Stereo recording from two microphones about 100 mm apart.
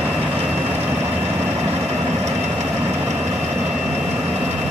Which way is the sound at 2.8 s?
25° right (ahead or behind).